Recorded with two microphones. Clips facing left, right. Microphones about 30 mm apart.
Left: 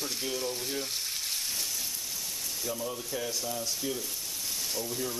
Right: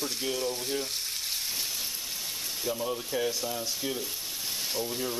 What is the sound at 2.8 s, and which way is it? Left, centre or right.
Frying, right.